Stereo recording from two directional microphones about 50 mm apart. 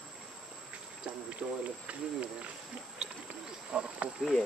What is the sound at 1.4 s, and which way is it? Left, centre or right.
Speech, centre.